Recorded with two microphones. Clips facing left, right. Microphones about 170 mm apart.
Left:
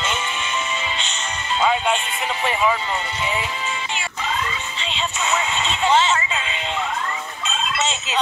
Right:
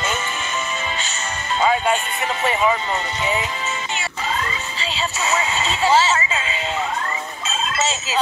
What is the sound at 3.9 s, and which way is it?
Music, centre (ahead or behind).